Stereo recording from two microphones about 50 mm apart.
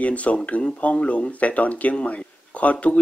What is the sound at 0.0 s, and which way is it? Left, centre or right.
Speech, left.